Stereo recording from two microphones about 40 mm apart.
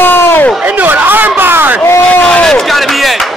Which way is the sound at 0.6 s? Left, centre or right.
Right.